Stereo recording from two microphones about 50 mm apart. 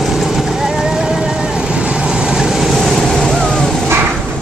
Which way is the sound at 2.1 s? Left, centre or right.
Centre.